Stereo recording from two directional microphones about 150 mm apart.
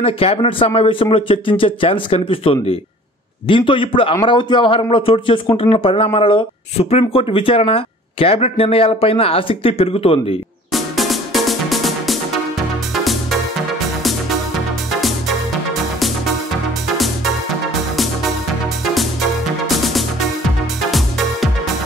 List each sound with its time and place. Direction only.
0.0 s a man's voice: 40° left (ahead or behind)
10.7 s music: centre (ahead or behind)
14.9 s music: centre (ahead or behind)
19.7 s music: centre (ahead or behind)